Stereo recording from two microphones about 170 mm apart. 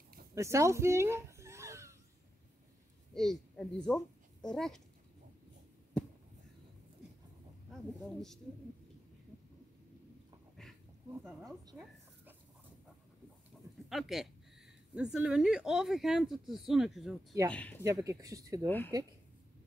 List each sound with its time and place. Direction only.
0.3 s a sound: 15° right (ahead or behind)
3.2 s a child's voice: 5° left (ahead or behind)
8.0 s speech: centre (ahead or behind)
11.7 s dog: centre (ahead or behind)
13.8 s speech: centre (ahead or behind)
17.8 s speech: 20° right (ahead or behind)